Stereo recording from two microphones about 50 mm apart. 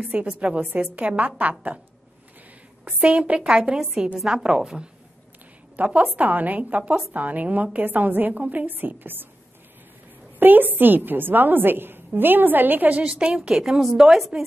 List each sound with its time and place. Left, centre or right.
0.1 s a woman's voice: right
2.8 s a woman's voice: right
3.3 s a woman's voice: centre
5.9 s a woman's voice: right
10.4 s a woman's voice: right
13.1 s a woman's voice: centre